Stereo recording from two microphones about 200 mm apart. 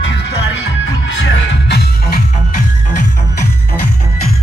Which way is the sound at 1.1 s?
65° left (ahead or behind).